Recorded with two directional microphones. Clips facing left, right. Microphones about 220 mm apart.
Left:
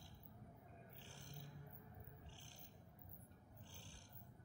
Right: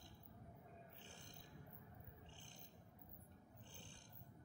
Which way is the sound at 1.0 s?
20° right (ahead or behind).